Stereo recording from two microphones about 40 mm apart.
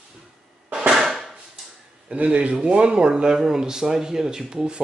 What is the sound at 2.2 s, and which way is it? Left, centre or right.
Speech, right.